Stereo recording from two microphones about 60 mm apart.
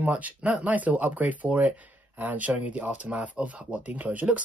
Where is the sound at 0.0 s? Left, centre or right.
Right.